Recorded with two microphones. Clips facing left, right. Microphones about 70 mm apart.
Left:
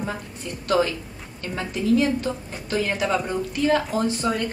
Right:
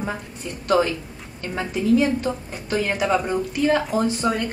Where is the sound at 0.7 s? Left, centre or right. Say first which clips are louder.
Right 2 dB; centre.